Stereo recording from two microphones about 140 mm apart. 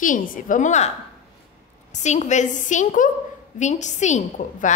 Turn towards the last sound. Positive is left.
turn(degrees=65)  # may be behind; listen again after turning